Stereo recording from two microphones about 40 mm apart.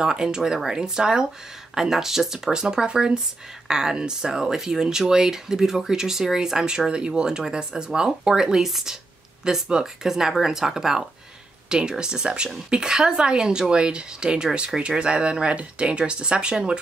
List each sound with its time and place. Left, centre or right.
0.0 s a woman's voice: centre
8.6 s speech: centre
9.4 s a woman's voice: centre